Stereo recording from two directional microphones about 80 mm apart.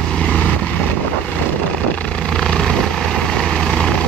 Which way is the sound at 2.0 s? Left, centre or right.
Centre.